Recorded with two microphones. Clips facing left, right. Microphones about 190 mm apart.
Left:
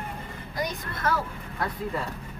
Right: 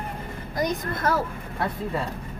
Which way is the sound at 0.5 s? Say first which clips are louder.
Right 6 dB; 40° right (ahead or behind).